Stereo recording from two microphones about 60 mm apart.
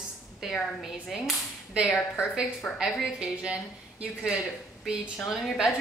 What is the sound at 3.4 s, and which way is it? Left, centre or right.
Speech, centre.